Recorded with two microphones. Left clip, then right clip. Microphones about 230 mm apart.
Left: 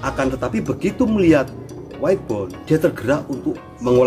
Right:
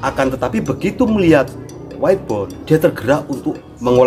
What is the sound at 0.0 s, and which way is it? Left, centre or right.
Speech, centre.